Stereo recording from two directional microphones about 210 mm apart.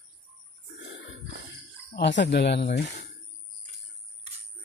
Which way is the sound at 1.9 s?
55° left (ahead or behind).